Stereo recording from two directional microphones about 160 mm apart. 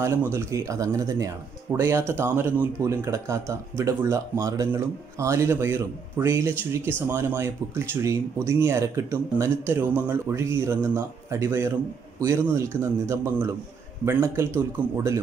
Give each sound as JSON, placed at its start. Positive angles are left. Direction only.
{"t": 0.0, "sound": "speech", "side_deg": -15}